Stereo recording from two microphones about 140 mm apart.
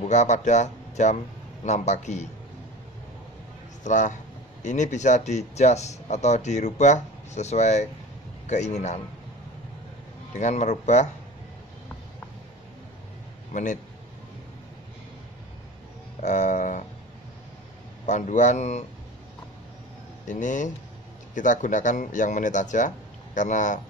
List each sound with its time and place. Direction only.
0.0 s speech: 55° left (ahead or behind)
3.8 s speech: 60° left (ahead or behind)
10.3 s speech: 55° left (ahead or behind)
13.5 s a man's voice: 65° left (ahead or behind)
16.2 s a sound: 60° left (ahead or behind)
18.0 s speech: 60° left (ahead or behind)
20.2 s speech: 65° left (ahead or behind)